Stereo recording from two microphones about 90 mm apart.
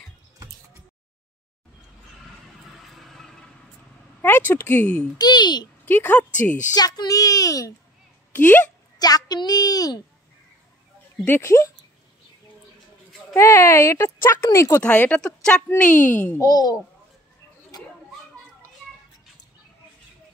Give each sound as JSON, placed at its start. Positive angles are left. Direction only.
{"t": 2.8, "sound": "a sound", "side_deg": 0}
{"t": 4.2, "sound": "speech", "side_deg": 25}
{"t": 5.1, "sound": "a child's voice", "side_deg": 50}
{"t": 5.9, "sound": "speech", "side_deg": 20}
{"t": 6.7, "sound": "speech", "side_deg": 50}
{"t": 8.4, "sound": "speech", "side_deg": 20}
{"t": 8.9, "sound": "a child's voice", "side_deg": 45}
{"t": 11.2, "sound": "speech", "side_deg": 30}
{"t": 13.3, "sound": "speech", "side_deg": 30}
{"t": 14.8, "sound": "speech", "side_deg": 15}
{"t": 16.4, "sound": "a child's voice", "side_deg": 45}
{"t": 17.7, "sound": "a sound", "side_deg": 45}